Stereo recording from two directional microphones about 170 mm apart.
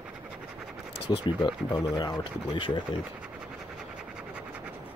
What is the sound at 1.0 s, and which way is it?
Speech, 30° left (ahead or behind).